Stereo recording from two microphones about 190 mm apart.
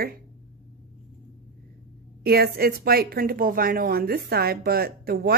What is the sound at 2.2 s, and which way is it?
Speech, 55° right (ahead or behind).